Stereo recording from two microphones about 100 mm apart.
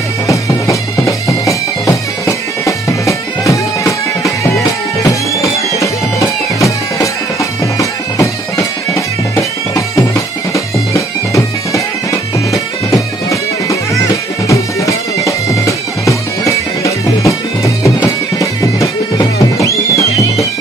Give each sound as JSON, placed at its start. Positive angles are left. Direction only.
{"t": 0.3, "sound": "music", "side_deg": 30}
{"t": 7.8, "sound": "bagpipes", "side_deg": 30}
{"t": 19.6, "sound": "music", "side_deg": 35}